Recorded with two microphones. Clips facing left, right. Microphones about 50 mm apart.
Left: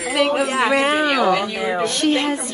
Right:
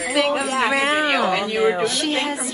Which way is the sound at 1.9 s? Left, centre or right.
Centre.